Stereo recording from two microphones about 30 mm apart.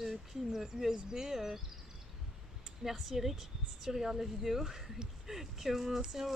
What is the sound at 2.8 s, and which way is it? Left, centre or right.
Speech, centre.